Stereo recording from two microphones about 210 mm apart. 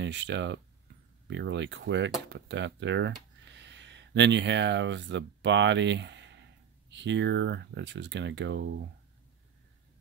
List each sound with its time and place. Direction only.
0.0 s speech: 55° right (ahead or behind)